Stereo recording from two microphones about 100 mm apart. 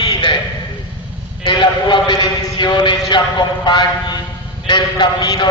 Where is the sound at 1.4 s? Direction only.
50° left (ahead or behind).